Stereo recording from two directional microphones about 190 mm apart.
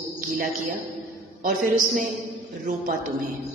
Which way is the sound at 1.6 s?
45° right (ahead or behind).